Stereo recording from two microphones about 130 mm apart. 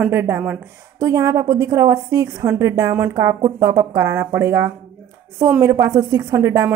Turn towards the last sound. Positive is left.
turn(degrees=-20)  # may be behind; listen again after turning